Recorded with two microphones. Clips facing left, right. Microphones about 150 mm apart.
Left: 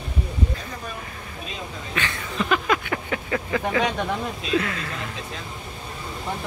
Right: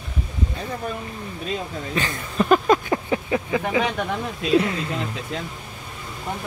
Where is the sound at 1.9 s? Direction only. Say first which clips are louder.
Right 4 dB; 40° right (ahead or behind).